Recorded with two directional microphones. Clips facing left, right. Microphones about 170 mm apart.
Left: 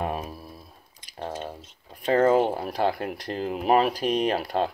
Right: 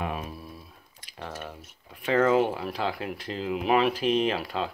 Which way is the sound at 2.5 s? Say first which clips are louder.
Left 5 dB; 40° left (ahead or behind).